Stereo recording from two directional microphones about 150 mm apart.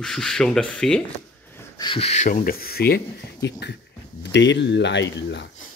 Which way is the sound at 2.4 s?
90° left.